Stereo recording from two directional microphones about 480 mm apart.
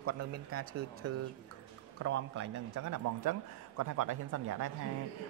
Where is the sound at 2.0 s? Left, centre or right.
Right.